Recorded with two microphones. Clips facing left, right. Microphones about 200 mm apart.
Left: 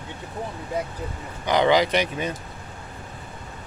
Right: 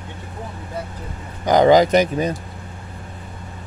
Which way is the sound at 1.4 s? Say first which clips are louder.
Right 6 dB; 45° right (ahead or behind).